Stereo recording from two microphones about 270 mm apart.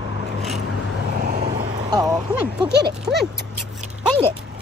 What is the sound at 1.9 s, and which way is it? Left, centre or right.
Vehicle, centre.